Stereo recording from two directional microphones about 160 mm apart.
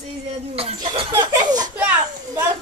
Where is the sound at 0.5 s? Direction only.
35° right (ahead or behind).